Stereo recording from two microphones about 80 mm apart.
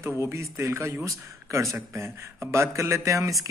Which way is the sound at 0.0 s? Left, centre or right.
Right.